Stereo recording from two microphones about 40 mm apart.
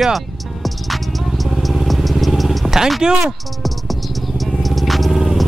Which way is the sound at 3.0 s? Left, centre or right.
Centre.